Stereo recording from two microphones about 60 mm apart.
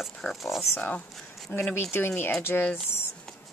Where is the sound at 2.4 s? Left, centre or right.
Left.